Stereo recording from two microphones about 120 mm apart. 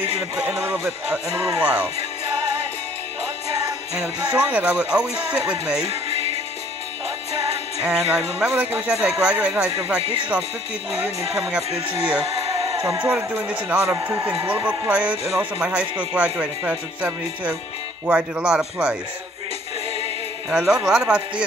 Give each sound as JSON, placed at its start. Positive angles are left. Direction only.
{"t": 0.4, "sound": "speech", "side_deg": -5}
{"t": 1.3, "sound": "speech", "side_deg": -45}
{"t": 1.6, "sound": "speech", "side_deg": -10}
{"t": 4.4, "sound": "speech", "side_deg": -10}
{"t": 7.8, "sound": "speech", "side_deg": -10}
{"t": 10.0, "sound": "speech", "side_deg": -45}
{"t": 11.3, "sound": "speech", "side_deg": -10}
{"t": 20.4, "sound": "speech", "side_deg": -5}